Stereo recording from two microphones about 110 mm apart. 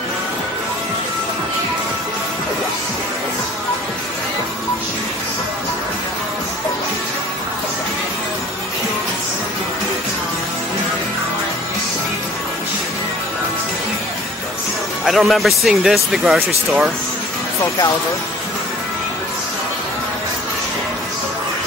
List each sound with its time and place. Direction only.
15.0 s speech: centre (ahead or behind)
17.6 s speech: 35° left (ahead or behind)